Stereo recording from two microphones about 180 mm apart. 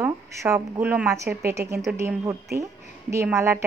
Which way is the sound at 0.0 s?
15° right (ahead or behind).